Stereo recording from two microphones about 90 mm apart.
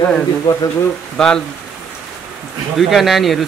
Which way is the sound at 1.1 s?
5° left (ahead or behind).